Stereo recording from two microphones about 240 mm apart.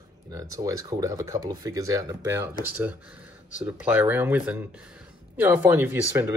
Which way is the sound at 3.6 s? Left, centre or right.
Centre.